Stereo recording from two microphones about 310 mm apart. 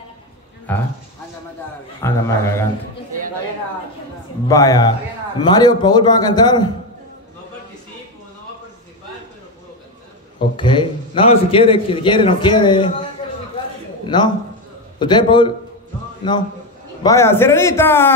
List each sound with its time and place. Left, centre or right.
0.7 s speech: centre
2.0 s a man's voice: centre
4.5 s a man's voice: centre
10.5 s a man's voice: centre
14.0 s a man's voice: centre